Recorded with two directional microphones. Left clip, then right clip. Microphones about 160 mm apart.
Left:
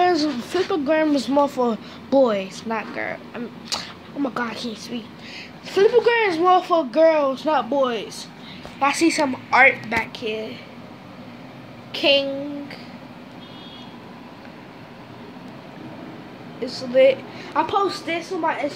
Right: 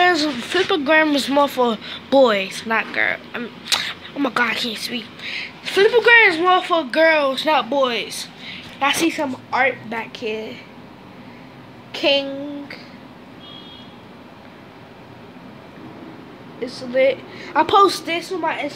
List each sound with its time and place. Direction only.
0.0 s a sound: centre (ahead or behind)
1.1 s a woman's voice: 5° left (ahead or behind); by 10.6 s 20° right (ahead or behind)
11.9 s speech: 15° right (ahead or behind)
16.6 s a woman's voice: 5° right (ahead or behind)
17.6 s a woman's voice: 70° right (ahead or behind)
18.0 s a woman's voice: 25° right (ahead or behind)